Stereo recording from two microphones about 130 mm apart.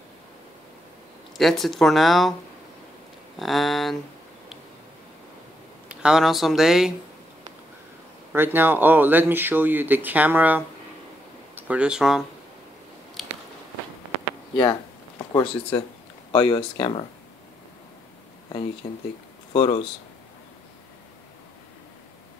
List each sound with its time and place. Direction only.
1.3 s speech: centre (ahead or behind)
3.3 s speech: centre (ahead or behind)
6.0 s speech: centre (ahead or behind)
8.3 s speech: 15° right (ahead or behind)
13.2 s biting: centre (ahead or behind)
14.5 s a sound: 40° left (ahead or behind)
16.3 s speech: 40° left (ahead or behind)
19.5 s speech: 40° left (ahead or behind)